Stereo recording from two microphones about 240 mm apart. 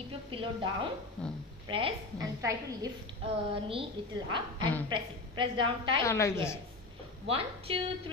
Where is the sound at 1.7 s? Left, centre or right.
Right.